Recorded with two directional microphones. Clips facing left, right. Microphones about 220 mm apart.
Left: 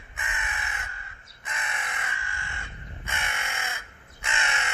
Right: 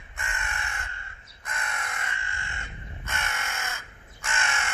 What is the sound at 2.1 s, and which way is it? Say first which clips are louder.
Crow: even; 25° right (ahead or behind).